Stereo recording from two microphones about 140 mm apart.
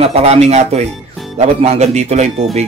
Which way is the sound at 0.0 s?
50° right (ahead or behind).